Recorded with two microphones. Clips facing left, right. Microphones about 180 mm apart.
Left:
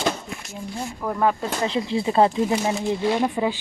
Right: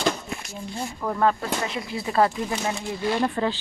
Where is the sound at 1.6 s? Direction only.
30° left (ahead or behind).